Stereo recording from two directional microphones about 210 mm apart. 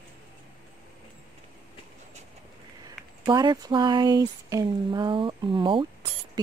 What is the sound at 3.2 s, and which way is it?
Speech, 20° right (ahead or behind).